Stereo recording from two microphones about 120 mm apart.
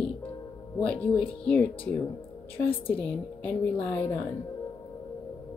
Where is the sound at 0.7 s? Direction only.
10° left (ahead or behind).